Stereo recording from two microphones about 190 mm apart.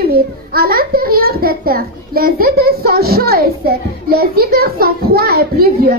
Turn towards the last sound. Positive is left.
turn(degrees=-55)  # may be behind; listen again after turning